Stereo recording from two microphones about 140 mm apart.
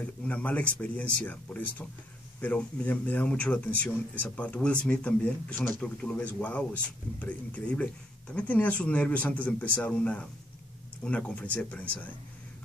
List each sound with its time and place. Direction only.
0.0 s speech: 10° left (ahead or behind)